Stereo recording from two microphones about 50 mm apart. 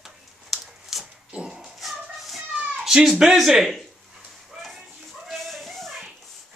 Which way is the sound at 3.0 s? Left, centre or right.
Centre.